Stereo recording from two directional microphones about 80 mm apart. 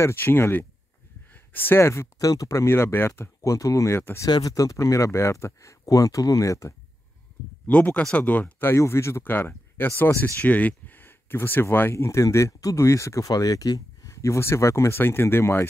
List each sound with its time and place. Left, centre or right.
0.0 s speech: left
4.3 s speech: left
7.6 s speech: centre
11.9 s speech: left